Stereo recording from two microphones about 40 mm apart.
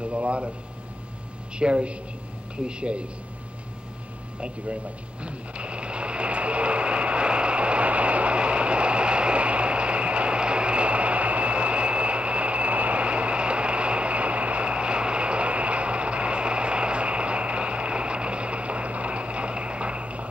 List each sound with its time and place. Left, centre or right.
0.0 s a sound: right
1.6 s speech: right
5.2 s vehicle: right